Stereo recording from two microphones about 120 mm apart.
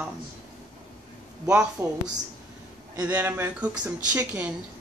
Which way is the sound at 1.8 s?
30° right (ahead or behind).